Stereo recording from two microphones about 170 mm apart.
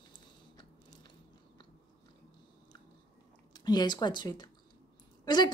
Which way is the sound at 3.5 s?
25° left (ahead or behind).